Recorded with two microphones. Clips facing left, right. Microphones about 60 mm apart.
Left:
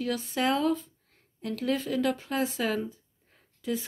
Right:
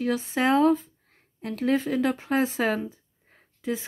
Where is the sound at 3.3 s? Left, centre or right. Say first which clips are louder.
Right 2 dB; right.